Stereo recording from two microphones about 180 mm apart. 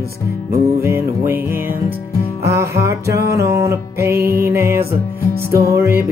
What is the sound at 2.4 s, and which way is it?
Music, 15° right (ahead or behind).